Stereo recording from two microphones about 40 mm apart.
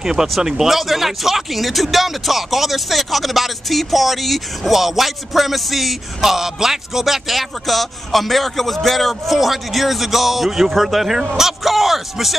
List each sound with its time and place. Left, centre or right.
0.0 s speech: centre